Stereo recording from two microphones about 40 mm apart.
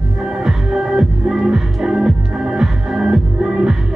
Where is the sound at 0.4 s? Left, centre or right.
Centre.